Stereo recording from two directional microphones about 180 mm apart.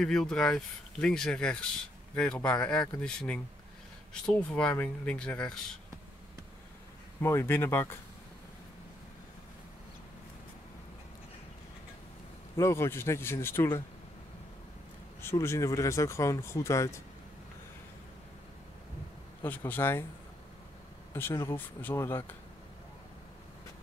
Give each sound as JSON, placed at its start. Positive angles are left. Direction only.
{"t": 0.0, "sound": "speech", "side_deg": 5}
{"t": 7.2, "sound": "speech", "side_deg": 15}
{"t": 12.5, "sound": "speech", "side_deg": 15}
{"t": 15.2, "sound": "speech", "side_deg": 15}
{"t": 19.4, "sound": "speech", "side_deg": 10}
{"t": 21.1, "sound": "speech", "side_deg": 15}